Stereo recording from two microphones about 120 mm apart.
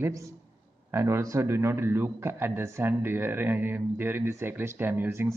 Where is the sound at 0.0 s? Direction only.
25° right (ahead or behind).